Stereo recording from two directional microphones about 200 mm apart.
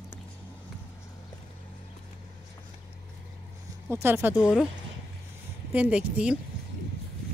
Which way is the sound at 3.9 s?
10° right (ahead or behind).